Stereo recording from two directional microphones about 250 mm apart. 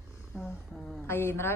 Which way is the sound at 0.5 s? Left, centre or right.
Centre.